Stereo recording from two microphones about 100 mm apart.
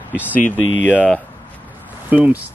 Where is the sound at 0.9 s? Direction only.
15° left (ahead or behind).